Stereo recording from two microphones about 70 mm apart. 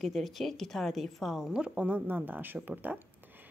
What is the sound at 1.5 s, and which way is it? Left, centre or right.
A woman's voice, centre.